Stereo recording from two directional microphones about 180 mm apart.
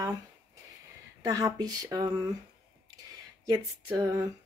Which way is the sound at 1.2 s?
20° right (ahead or behind).